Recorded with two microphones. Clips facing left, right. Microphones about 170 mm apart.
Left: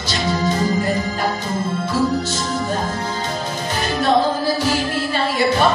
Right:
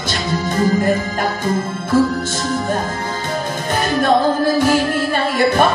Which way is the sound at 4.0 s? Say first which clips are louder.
Right 2 dB; 50° right (ahead or behind).